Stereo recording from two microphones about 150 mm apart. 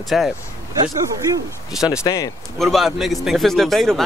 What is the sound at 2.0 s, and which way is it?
Speech, 25° left (ahead or behind).